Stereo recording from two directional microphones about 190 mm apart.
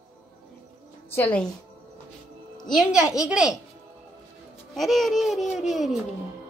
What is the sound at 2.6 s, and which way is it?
Speech, centre (ahead or behind).